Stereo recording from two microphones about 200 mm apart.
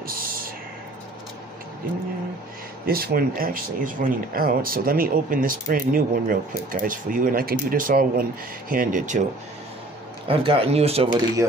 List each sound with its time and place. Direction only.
0.0 s a sound: 45° right (ahead or behind)
2.9 s speech: 50° right (ahead or behind)
10.2 s speech: 30° right (ahead or behind)